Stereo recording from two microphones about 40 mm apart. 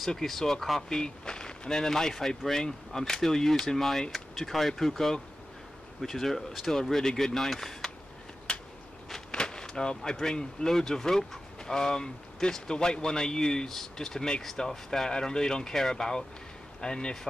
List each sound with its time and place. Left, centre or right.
0.0 s speech: centre
8.5 s a sound: left
10.2 s speech: centre